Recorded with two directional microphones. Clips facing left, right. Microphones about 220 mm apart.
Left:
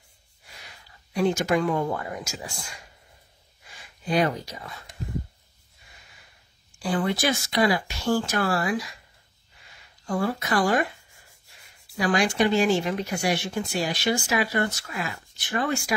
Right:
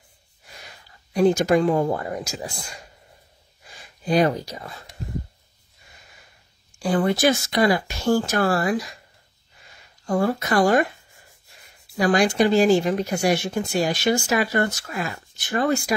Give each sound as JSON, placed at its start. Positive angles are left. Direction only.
{"t": 1.1, "sound": "speech", "side_deg": -40}
{"t": 4.0, "sound": "speech", "side_deg": -40}
{"t": 6.8, "sound": "speech", "side_deg": -45}
{"t": 10.0, "sound": "speech", "side_deg": -40}
{"t": 12.0, "sound": "speech", "side_deg": -40}